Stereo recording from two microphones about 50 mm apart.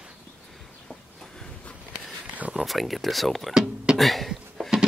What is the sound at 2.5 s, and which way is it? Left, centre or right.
Speech, centre.